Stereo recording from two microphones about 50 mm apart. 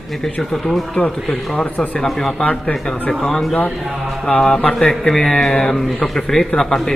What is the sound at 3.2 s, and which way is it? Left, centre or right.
Speech, centre.